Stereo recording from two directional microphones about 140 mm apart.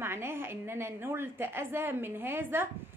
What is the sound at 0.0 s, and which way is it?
A woman's voice, 15° right (ahead or behind).